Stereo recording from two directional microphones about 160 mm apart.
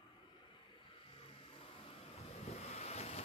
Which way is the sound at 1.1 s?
35° left (ahead or behind).